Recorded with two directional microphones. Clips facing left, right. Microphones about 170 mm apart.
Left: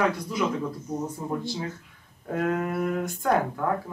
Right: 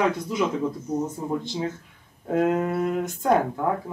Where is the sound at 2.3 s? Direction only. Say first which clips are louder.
Right 4 dB; 20° right (ahead or behind).